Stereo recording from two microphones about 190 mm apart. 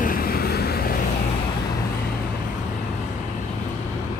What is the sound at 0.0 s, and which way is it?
Vehicle, 50° left (ahead or behind).